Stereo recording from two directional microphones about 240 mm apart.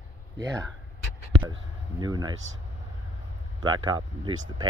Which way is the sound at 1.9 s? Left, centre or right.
Centre.